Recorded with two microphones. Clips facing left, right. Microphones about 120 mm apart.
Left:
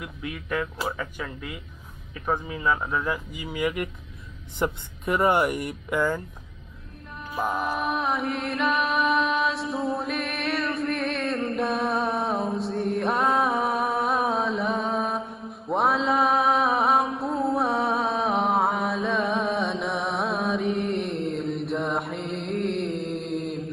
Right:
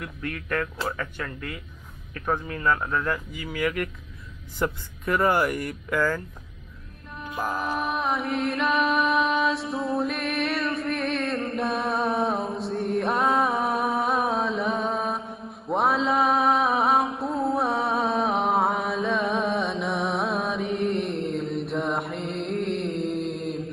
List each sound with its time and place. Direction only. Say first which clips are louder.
0.0 s speech: right 1 dB; 5° left (ahead or behind)
7.3 s music: left 1 dB; centre (ahead or behind)